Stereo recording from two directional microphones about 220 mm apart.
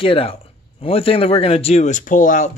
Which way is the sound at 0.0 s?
25° left (ahead or behind).